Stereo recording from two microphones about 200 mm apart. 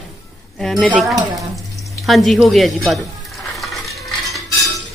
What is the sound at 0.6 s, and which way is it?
A woman's voice, centre (ahead or behind).